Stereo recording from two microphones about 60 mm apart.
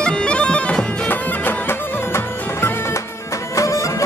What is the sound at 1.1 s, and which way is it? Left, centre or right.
Music, left.